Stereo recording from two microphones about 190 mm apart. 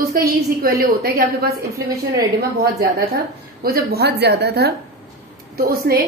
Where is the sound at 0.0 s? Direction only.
50° right (ahead or behind).